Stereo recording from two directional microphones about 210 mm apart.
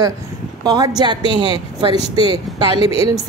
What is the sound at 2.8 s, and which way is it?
Speech, 25° left (ahead or behind).